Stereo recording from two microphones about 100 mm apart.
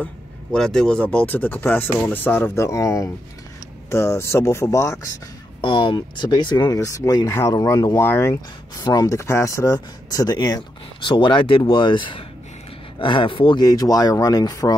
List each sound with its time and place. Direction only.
0.0 s speech: 10° left (ahead or behind); by 5.0 s 30° left (ahead or behind)
5.6 s speech: 60° left (ahead or behind)
6.8 s speech: 30° left (ahead or behind)
8.7 s speech: 40° left (ahead or behind); by 13.6 s 60° left (ahead or behind)
13.6 s speech: 40° left (ahead or behind)